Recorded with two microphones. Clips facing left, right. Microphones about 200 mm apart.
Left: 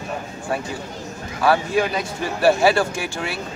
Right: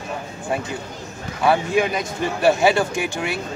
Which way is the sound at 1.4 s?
20° right (ahead or behind).